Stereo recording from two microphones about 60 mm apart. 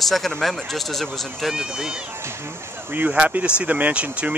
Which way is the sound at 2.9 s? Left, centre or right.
Right.